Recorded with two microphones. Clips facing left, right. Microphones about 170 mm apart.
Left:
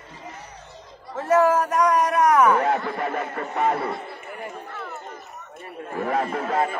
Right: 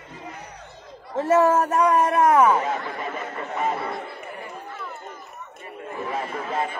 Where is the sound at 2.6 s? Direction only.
60° left (ahead or behind).